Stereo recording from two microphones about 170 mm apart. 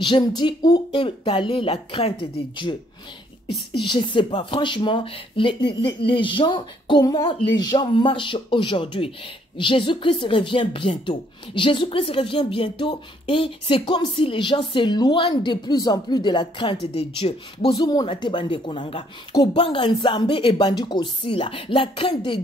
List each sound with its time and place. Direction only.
0.0 s speech: 25° left (ahead or behind)
17.7 s speech: 25° left (ahead or behind)